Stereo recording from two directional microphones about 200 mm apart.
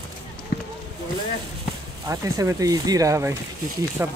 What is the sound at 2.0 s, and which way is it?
Speech, 15° right (ahead or behind).